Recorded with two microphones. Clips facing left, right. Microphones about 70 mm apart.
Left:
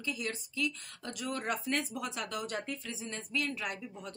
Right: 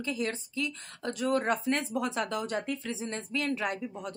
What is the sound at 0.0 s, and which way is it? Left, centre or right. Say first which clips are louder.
Speech: right 5 dB; right.